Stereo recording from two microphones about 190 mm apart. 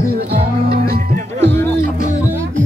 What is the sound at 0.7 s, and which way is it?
Music, 50° right (ahead or behind).